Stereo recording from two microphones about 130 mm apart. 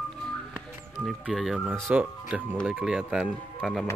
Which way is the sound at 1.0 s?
Centre (ahead or behind).